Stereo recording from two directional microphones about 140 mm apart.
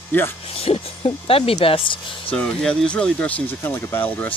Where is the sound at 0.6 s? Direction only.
45° left (ahead or behind).